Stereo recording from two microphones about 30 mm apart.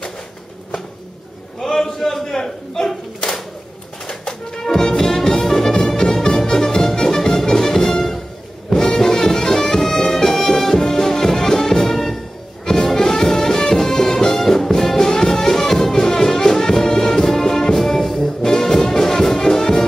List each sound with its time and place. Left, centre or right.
1.6 s a sound: centre
4.3 s music: left
18.2 s brass instrument: centre